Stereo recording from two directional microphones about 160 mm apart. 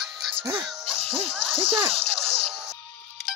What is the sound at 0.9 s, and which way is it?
Music, 35° right (ahead or behind).